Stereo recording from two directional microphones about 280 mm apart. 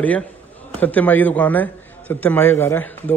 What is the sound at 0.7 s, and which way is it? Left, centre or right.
A man's voice, centre.